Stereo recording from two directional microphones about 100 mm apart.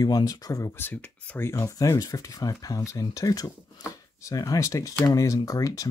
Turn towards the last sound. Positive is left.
turn(degrees=35)  # may be behind; listen again after turning